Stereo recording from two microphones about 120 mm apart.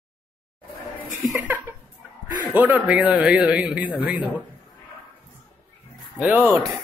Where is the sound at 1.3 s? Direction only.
15° right (ahead or behind).